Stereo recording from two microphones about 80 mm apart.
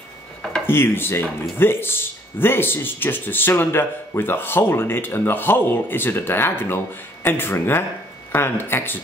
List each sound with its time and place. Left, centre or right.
0.7 s speech: left